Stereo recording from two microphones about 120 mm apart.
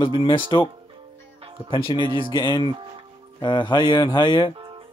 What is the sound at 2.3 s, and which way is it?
Speech, 40° left (ahead or behind).